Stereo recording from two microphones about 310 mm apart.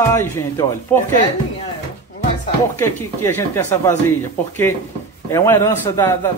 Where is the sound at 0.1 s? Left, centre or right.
Centre.